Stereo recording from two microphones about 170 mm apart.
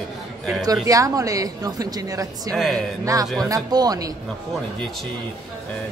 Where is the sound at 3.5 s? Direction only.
20° right (ahead or behind).